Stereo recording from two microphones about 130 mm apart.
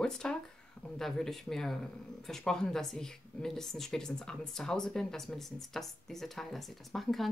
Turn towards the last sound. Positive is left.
turn(degrees=0)  # may be behind; listen again after turning